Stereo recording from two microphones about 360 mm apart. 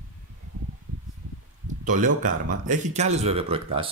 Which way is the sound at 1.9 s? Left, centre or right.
Right.